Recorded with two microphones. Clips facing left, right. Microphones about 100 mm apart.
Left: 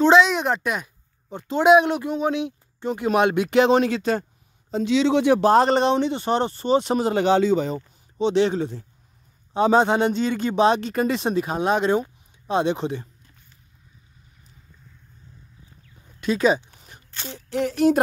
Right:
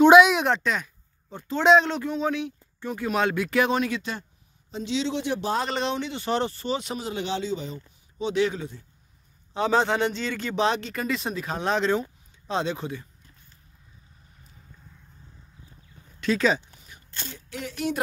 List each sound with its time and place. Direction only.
0.0 s a sound: 10° right (ahead or behind)
0.6 s a man's voice: 10° left (ahead or behind); by 4.9 s 45° left (ahead or behind)
4.9 s speech: 90° left
5.4 s speech: 50° left (ahead or behind)
6.0 s a man's voice: 25° left (ahead or behind)
6.9 s speech: 50° left (ahead or behind)
8.2 s a man's voice: 25° left (ahead or behind)
9.5 s a man's voice: 20° left (ahead or behind)
16.2 s speech: 15° left (ahead or behind)
16.8 s speech: 40° left (ahead or behind)